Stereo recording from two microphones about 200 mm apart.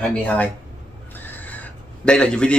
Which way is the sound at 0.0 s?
5° left (ahead or behind).